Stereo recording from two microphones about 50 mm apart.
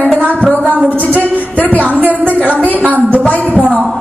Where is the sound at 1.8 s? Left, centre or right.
Right.